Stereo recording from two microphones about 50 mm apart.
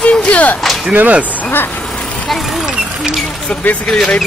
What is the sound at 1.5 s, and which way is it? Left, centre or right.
Speech, left.